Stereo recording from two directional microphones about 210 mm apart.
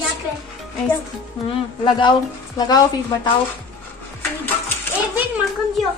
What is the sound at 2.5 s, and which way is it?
Speech, 20° left (ahead or behind).